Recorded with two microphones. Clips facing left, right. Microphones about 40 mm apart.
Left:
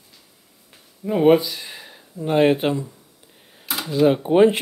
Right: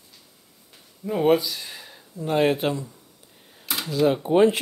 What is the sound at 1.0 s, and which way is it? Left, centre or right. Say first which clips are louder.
Speech: left 4 dB; left.